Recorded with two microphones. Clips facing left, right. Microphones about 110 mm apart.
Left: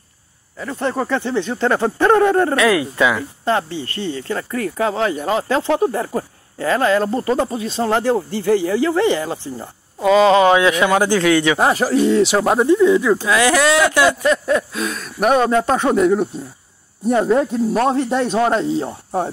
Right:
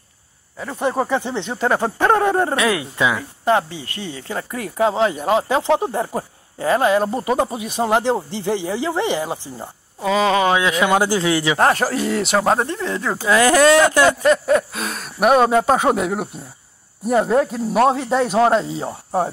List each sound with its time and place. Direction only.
0.6 s speech: 15° right (ahead or behind)
9.9 s speech: 20° left (ahead or behind)
10.6 s speech: 20° right (ahead or behind)
11.5 s speech: 5° left (ahead or behind)
13.3 s speech: 40° right (ahead or behind)
14.2 s speech: centre (ahead or behind)